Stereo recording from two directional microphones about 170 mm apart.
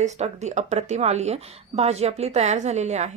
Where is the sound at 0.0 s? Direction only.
45° right (ahead or behind).